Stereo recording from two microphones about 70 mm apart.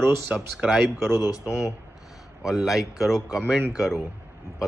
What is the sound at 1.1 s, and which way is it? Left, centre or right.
Speech, left.